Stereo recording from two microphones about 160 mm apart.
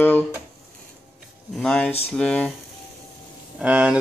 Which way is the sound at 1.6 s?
5° left (ahead or behind).